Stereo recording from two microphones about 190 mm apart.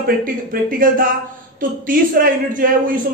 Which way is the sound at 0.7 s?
45° right (ahead or behind).